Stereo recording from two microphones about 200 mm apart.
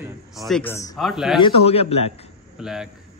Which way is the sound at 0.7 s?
15° left (ahead or behind).